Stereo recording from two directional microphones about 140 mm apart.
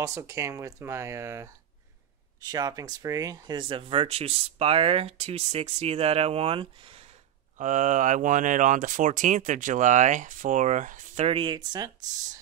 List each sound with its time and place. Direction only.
0.0 s speech: 20° right (ahead or behind); by 7.1 s 40° right (ahead or behind)
7.5 s speech: 65° right (ahead or behind)
11.2 s speech: 35° right (ahead or behind)